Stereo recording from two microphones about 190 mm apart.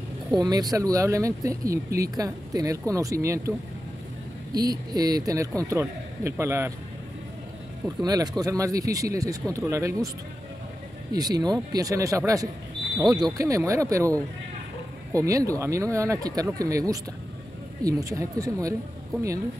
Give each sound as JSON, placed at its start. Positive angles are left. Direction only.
{"t": 0.4, "sound": "speech", "side_deg": -20}
{"t": 4.6, "sound": "speech", "side_deg": -20}
{"t": 8.0, "sound": "speech", "side_deg": -20}
{"t": 11.1, "sound": "speech", "side_deg": -20}